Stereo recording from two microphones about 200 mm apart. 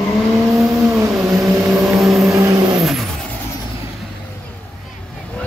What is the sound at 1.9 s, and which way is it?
Vehicle, centre (ahead or behind).